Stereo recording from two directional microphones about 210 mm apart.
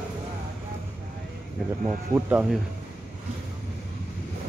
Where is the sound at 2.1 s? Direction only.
10° right (ahead or behind).